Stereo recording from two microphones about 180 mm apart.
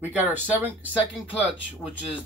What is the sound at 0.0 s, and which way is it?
Speech, 10° right (ahead or behind).